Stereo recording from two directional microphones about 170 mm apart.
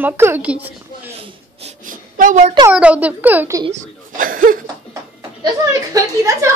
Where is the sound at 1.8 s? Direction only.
50° right (ahead or behind).